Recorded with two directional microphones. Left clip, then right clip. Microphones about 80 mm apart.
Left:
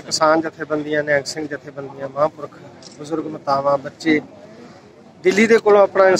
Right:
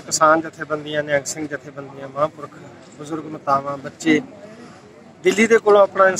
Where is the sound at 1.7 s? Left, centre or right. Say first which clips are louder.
Left 4 dB; centre.